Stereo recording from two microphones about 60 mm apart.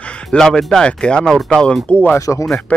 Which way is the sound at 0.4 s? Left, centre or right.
Centre.